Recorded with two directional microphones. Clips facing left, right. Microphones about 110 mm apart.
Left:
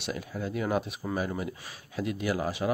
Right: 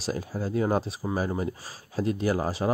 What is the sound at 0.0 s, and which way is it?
Speech, 35° right (ahead or behind).